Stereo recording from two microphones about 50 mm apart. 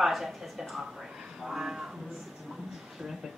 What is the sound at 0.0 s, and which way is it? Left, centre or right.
A woman's voice, centre.